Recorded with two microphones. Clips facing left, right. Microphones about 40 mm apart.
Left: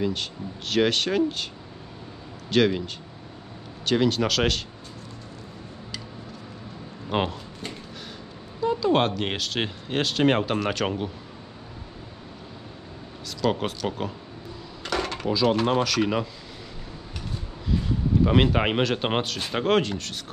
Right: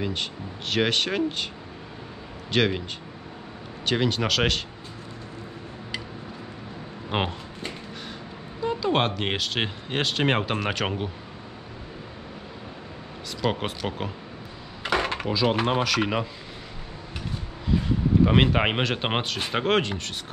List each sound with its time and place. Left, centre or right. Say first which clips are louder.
0.0 s speech: left 2 dB; centre
2.5 s speech: left 2 dB; centre
3.8 s speech: left 2 dB; centre
7.1 s a sound: left 1 dB; centre
8.5 s speech: left 2 dB; centre
13.4 s speech: left 2 dB; centre
14.8 s a sound: right 3 dB; right
15.3 s speech: left 2 dB; centre
17.6 s speech: right 2 dB; centre